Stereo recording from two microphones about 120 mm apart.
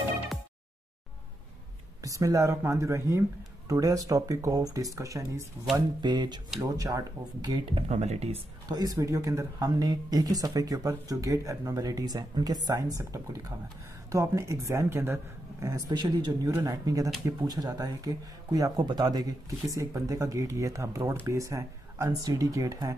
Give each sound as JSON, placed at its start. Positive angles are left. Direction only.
{"t": 2.0, "sound": "speech", "side_deg": -25}
{"t": 5.9, "sound": "speech", "side_deg": -40}
{"t": 7.4, "sound": "speech", "side_deg": -40}
{"t": 7.9, "sound": "speech", "side_deg": -65}
{"t": 8.6, "sound": "speech", "side_deg": -30}
{"t": 15.6, "sound": "speech", "side_deg": -35}